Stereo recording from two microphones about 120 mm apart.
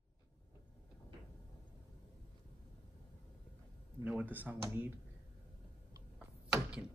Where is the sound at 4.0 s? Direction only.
15° right (ahead or behind).